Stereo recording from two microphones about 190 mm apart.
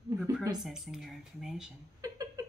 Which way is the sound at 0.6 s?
Centre (ahead or behind).